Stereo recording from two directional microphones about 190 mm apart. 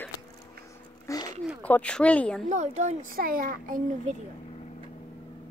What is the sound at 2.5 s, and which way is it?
A child's voice, 40° right (ahead or behind).